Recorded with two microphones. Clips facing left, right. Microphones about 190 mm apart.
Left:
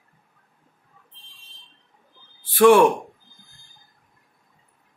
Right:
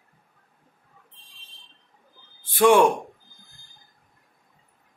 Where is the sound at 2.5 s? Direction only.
15° right (ahead or behind).